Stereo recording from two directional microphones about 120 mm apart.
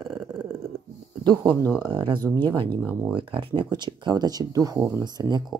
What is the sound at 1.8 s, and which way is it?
Speech, 40° right (ahead or behind).